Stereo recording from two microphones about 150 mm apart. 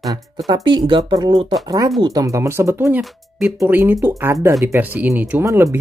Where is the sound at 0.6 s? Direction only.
30° right (ahead or behind); by 3.0 s 15° right (ahead or behind).